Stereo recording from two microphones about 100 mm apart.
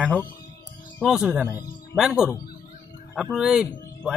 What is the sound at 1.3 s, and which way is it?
Speech, 15° right (ahead or behind).